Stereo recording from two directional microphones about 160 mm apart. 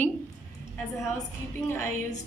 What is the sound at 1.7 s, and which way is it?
Speech, 15° left (ahead or behind).